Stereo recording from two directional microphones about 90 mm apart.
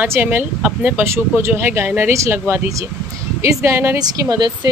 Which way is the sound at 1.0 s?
30° right (ahead or behind).